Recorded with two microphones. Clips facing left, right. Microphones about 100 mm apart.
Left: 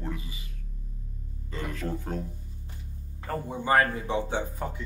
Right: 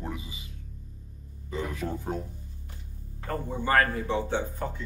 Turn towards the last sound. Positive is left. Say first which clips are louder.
# right 1 dB
turn(degrees=10)  # may be behind; listen again after turning